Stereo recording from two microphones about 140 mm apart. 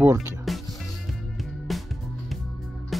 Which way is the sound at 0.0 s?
20° right (ahead or behind).